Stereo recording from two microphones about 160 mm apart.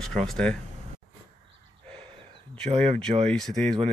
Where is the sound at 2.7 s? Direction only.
40° right (ahead or behind).